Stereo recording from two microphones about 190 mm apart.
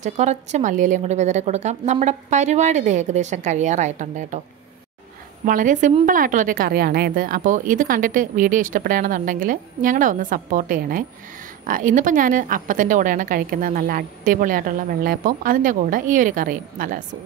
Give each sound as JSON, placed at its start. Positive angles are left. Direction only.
{"t": 0.0, "sound": "a woman's voice", "side_deg": -35}
{"t": 5.4, "sound": "a woman's voice", "side_deg": -45}